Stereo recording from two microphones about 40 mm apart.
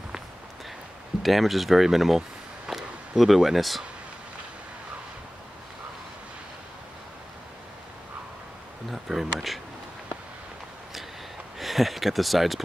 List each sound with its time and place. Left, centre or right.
1.2 s speech: centre
8.9 s speech: centre
11.6 s speech: centre